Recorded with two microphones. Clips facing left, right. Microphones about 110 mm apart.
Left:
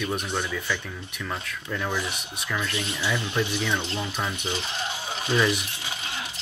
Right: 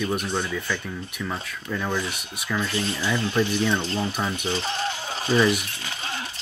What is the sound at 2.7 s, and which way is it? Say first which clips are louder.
Speech: right 4 dB; 30° right (ahead or behind).